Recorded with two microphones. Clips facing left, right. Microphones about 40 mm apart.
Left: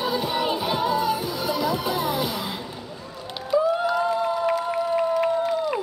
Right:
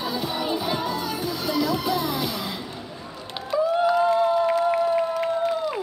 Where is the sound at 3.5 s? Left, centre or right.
Centre.